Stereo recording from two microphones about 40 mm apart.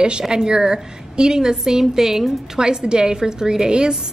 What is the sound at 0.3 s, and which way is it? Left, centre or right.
A woman's voice, centre.